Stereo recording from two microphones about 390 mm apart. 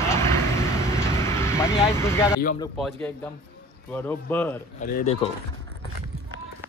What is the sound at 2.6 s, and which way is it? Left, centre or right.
Speech, centre.